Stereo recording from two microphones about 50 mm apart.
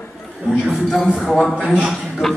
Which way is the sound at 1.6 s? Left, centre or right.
Right.